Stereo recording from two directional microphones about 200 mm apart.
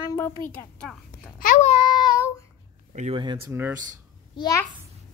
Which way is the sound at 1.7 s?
25° left (ahead or behind).